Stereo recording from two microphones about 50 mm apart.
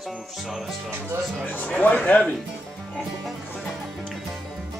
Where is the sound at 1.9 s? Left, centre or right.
Left.